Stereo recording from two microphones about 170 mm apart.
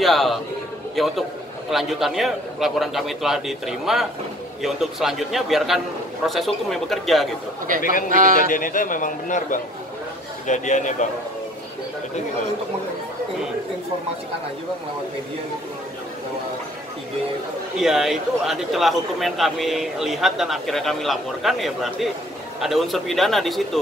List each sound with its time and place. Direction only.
0.0 s a man's voice: centre (ahead or behind)
8.4 s a man's voice: 55° left (ahead or behind)
17.7 s a man's voice: 5° right (ahead or behind)